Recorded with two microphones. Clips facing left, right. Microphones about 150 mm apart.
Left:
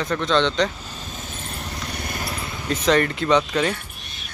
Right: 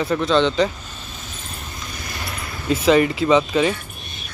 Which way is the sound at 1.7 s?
70° left (ahead or behind).